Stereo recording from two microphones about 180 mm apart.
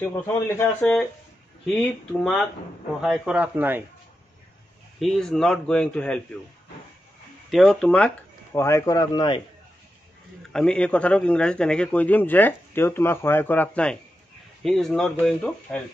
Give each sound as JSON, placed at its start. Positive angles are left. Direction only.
{"t": 0.0, "sound": "a man's voice", "side_deg": 15}
{"t": 5.0, "sound": "speech", "side_deg": 0}
{"t": 7.4, "sound": "speech", "side_deg": 0}
{"t": 8.5, "sound": "speech", "side_deg": 15}
{"t": 10.5, "sound": "a man's voice", "side_deg": 5}